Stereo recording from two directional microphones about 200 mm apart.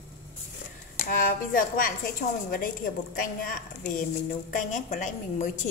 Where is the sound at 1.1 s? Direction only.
45° left (ahead or behind).